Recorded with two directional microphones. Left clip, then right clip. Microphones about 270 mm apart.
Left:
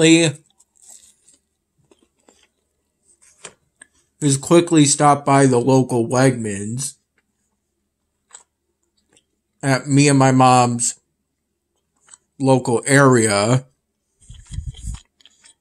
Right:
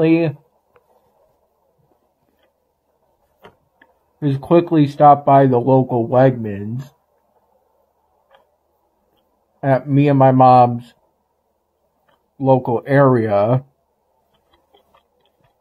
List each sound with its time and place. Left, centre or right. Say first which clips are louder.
0.0 s speech: left 2 dB; centre
3.8 s speech: left 1 dB; centre
9.6 s speech: right 1 dB; centre
12.4 s speech: right 1 dB; centre
14.5 s a sound: left 11 dB; centre